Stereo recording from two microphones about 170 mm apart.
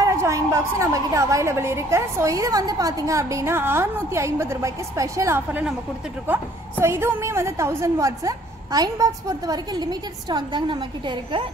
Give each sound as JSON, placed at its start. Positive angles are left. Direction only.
{"t": 0.0, "sound": "a woman's voice", "side_deg": -15}